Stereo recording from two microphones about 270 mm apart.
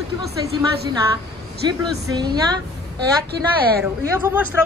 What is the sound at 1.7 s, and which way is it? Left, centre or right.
Speech, centre.